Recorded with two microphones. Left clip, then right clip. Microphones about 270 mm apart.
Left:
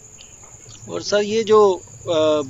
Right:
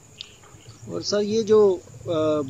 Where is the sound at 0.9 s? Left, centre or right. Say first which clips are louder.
Left 4 dB; left.